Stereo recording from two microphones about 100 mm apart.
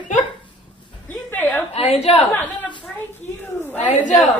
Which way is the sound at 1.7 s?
90° left.